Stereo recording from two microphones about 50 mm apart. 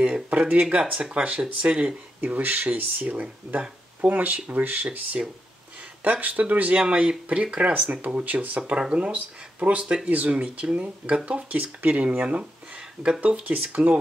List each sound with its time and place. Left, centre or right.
0.0 s speech: right
6.0 s speech: right
6.8 s speech: right
8.7 s speech: centre